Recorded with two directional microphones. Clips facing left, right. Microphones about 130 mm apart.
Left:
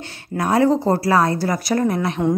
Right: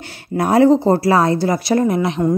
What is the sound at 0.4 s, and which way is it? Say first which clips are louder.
Speech: right 4 dB; 30° right (ahead or behind).